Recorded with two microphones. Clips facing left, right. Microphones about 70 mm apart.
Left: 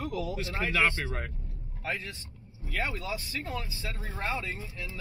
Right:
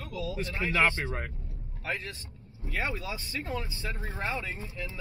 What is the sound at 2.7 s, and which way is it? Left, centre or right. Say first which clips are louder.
Speech: even; centre.